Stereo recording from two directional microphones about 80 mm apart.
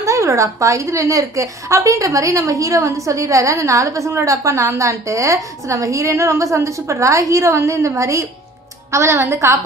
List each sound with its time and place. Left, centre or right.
0.0 s a woman's voice: right